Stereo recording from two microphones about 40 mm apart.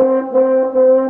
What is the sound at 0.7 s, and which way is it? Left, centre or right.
French horn, centre.